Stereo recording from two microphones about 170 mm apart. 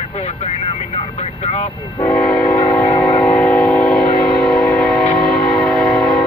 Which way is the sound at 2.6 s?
20° left (ahead or behind).